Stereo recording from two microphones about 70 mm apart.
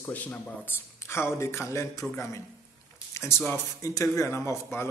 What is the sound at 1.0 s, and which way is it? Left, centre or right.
A man's voice, left.